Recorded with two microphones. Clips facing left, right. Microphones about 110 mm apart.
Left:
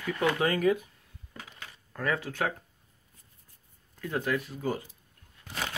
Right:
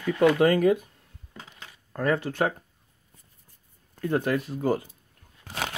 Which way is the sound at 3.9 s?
45° right (ahead or behind).